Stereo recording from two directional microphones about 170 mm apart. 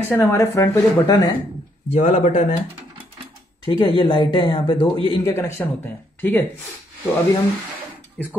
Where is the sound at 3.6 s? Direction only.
30° left (ahead or behind).